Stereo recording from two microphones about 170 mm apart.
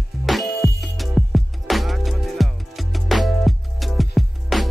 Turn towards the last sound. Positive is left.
turn(degrees=0)  # may be behind; listen again after turning